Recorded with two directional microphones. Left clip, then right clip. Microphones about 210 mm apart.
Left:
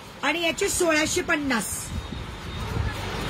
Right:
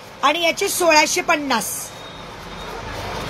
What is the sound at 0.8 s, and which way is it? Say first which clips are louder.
Speech: right 10 dB; 10° left (ahead or behind).